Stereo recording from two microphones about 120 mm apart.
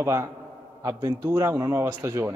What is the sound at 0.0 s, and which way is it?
A man's voice, 25° right (ahead or behind).